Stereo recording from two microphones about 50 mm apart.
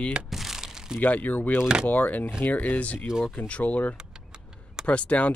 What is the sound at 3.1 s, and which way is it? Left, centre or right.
Speech, centre.